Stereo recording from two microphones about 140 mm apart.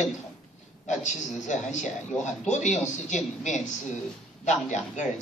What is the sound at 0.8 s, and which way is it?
A man's voice, 60° left (ahead or behind).